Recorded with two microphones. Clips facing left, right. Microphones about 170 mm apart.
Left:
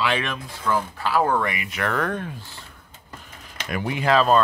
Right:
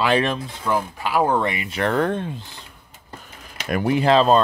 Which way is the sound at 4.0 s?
25° right (ahead or behind).